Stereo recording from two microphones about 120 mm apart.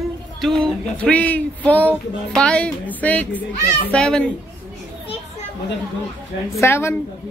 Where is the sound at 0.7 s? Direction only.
10° left (ahead or behind).